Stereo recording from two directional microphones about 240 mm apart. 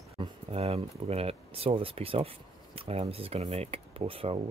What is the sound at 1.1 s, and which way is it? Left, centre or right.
Speech, right.